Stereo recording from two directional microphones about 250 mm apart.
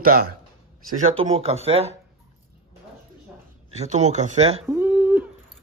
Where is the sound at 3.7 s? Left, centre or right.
Right.